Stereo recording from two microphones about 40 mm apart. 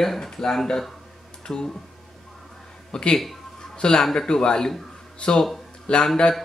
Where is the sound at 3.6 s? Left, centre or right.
Left.